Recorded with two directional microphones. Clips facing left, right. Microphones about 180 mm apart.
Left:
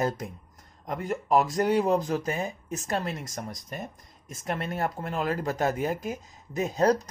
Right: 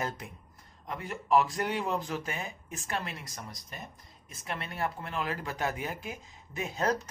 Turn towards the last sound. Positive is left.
turn(degrees=35)  # may be behind; listen again after turning